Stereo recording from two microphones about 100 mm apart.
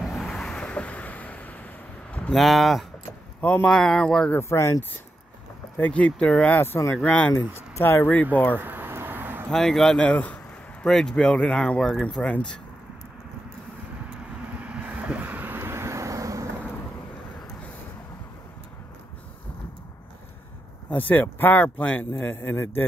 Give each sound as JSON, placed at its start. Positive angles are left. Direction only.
{"t": 0.0, "sound": "vehicle", "side_deg": 0}
{"t": 2.3, "sound": "speech", "side_deg": 0}
{"t": 3.3, "sound": "speech", "side_deg": 15}
{"t": 4.4, "sound": "speech", "side_deg": 30}
{"t": 5.8, "sound": "speech", "side_deg": 15}
{"t": 6.6, "sound": "speech", "side_deg": 25}
{"t": 7.1, "sound": "speech", "side_deg": 15}
{"t": 7.3, "sound": "speech", "side_deg": 25}
{"t": 8.5, "sound": "vehicle", "side_deg": -20}
{"t": 9.5, "sound": "speech", "side_deg": 5}
{"t": 14.5, "sound": "vehicle", "side_deg": -10}
{"t": 21.1, "sound": "speech", "side_deg": 20}